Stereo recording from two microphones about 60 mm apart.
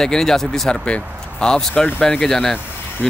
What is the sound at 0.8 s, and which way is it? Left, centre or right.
Speech, centre.